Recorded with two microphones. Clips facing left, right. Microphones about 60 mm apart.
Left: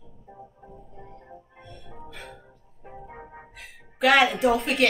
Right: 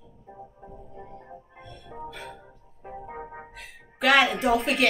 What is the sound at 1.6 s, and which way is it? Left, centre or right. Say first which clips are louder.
Music: right 7 dB; centre.